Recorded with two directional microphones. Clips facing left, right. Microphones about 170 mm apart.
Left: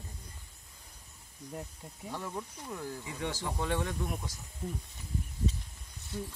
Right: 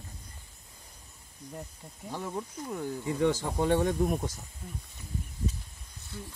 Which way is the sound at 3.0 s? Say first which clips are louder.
Right 10 dB; 50° right (ahead or behind).